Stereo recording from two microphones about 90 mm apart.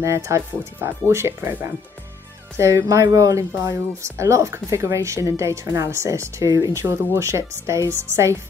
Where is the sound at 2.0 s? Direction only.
25° right (ahead or behind).